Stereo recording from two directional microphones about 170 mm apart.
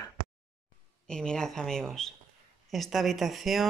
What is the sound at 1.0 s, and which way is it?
Speech, 5° left (ahead or behind).